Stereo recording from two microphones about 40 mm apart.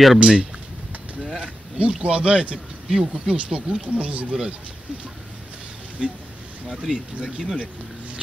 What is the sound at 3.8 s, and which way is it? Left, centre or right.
Speech, right.